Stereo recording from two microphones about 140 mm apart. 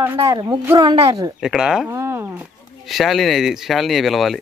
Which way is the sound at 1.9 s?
20° right (ahead or behind).